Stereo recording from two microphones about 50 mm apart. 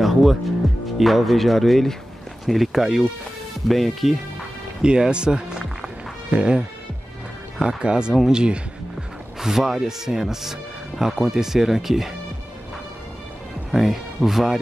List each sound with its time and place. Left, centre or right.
0.0 s music: centre
0.9 s speech: centre
4.8 s speech: centre
7.6 s speech: centre
13.7 s speech: centre